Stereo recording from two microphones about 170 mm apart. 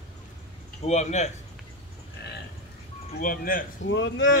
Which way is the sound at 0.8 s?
40° left (ahead or behind).